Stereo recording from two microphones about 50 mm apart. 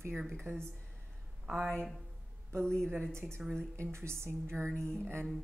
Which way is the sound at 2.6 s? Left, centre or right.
Centre.